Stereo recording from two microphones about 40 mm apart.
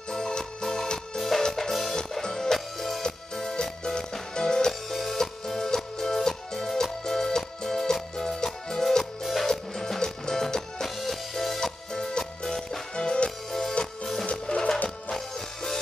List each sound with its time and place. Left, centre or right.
0.1 s music: centre
2.0 s music: centre
4.8 s music: centre
9.2 s music: centre
9.5 s music: centre
12.9 s music: left
13.5 s music: centre
14.5 s music: left
15.0 s music: centre